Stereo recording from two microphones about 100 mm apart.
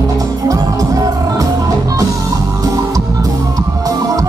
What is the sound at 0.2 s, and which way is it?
Music, 35° right (ahead or behind).